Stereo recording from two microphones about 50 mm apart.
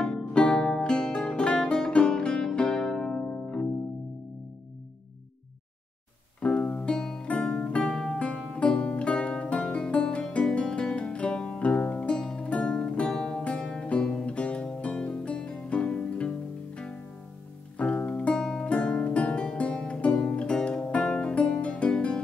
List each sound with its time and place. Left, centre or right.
0.0 s music: centre
6.4 s music: left
7.8 s music: centre